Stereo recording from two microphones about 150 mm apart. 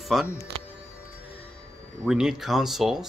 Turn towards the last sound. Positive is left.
turn(degrees=0)  # may be behind; listen again after turning